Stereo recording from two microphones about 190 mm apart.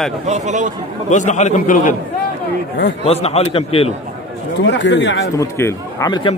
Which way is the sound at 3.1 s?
35° left (ahead or behind).